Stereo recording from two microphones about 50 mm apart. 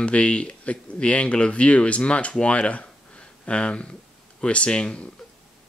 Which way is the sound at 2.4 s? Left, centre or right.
Left.